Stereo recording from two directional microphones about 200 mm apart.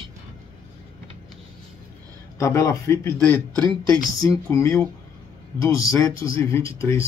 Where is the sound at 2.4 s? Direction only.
15° left (ahead or behind).